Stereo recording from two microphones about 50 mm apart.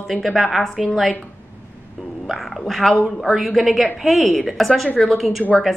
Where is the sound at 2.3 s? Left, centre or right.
Centre.